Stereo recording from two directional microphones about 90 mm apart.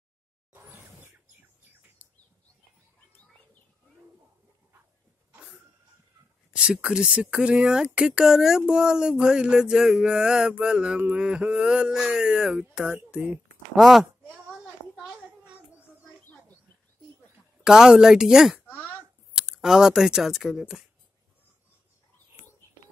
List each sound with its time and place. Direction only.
0.5 s a sound: 20° right (ahead or behind)
2.0 s bird: 20° right (ahead or behind)
6.5 s speech: 10° right (ahead or behind)
13.7 s speech: centre (ahead or behind)
15.0 s a sound: 10° right (ahead or behind)
17.6 s speech: 10° right (ahead or behind)